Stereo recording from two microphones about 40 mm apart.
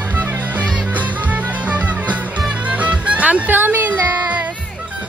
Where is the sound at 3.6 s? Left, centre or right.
Right.